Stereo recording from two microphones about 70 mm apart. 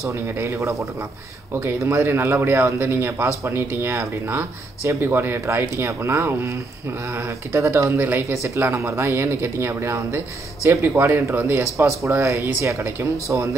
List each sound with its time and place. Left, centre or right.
0.0 s a man's voice: right
8.3 s a man's voice: right
11.6 s a man's voice: right